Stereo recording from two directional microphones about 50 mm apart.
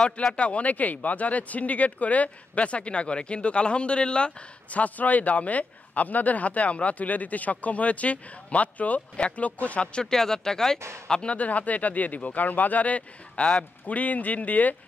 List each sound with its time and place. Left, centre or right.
0.0 s speech: centre
10.1 s speech: centre
11.3 s speech: left